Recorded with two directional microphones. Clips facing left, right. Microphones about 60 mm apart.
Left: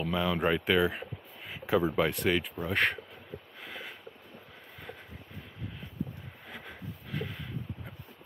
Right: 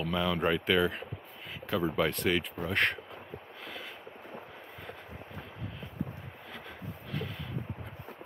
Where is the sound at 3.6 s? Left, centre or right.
Centre.